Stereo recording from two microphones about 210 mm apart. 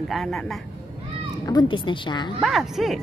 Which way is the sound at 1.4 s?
20° left (ahead or behind).